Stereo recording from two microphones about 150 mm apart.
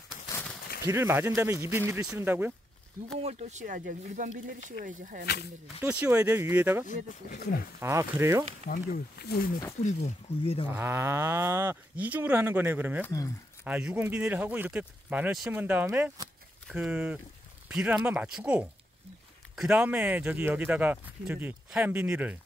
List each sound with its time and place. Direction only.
0.8 s speech: 15° right (ahead or behind)
3.2 s speech: 45° right (ahead or behind); by 5.2 s 65° right (ahead or behind)
5.2 s speech: 90° left
5.8 s speech: 10° right (ahead or behind)
6.9 s speech: 70° left (ahead or behind)
7.8 s speech: 20° right (ahead or behind)
8.6 s speech: 85° left
10.0 s speech: 40° left (ahead or behind)
10.7 s speech: 15° right (ahead or behind)
13.0 s speech: 20° left (ahead or behind)
13.7 s speech: 10° right (ahead or behind)